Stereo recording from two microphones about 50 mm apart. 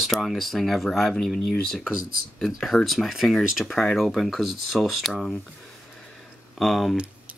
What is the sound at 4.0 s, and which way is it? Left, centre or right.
Speech, centre.